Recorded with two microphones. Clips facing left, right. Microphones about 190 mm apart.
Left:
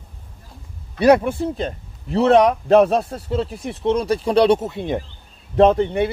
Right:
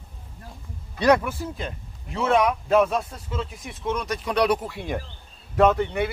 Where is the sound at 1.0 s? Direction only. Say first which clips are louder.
Left 6 dB; 30° left (ahead or behind).